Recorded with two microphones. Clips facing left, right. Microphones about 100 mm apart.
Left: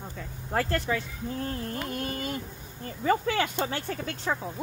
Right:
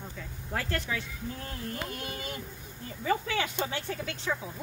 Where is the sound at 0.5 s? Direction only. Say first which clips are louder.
Left 6 dB; 40° left (ahead or behind).